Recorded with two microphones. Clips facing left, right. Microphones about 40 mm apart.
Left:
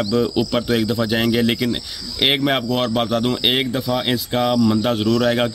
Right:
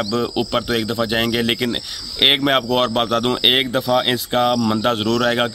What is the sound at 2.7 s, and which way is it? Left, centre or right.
Speech, right.